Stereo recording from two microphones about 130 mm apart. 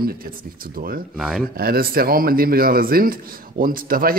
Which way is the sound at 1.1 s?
5° left (ahead or behind).